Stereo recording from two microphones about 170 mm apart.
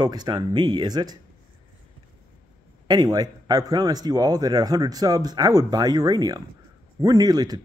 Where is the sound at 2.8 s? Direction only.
25° right (ahead or behind).